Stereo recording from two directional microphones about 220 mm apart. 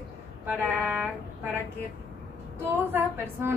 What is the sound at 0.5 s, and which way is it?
Speech, 5° right (ahead or behind).